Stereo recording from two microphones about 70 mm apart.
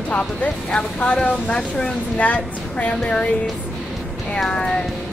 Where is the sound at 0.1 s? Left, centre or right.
Centre.